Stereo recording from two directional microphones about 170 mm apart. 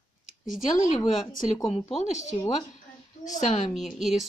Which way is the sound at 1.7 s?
40° left (ahead or behind).